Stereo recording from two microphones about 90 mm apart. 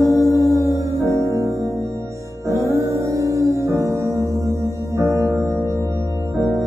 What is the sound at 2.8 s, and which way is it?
Music, 35° right (ahead or behind).